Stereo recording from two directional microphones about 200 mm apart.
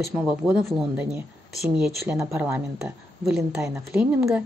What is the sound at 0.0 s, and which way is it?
Speech, 5° right (ahead or behind).